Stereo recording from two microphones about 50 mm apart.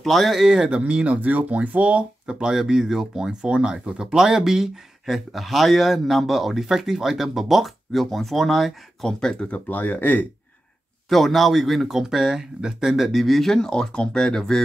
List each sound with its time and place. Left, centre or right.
0.0 s speech: centre
0.5 s speech: centre
9.2 s speech: centre
9.5 s speech: left
11.1 s speech: centre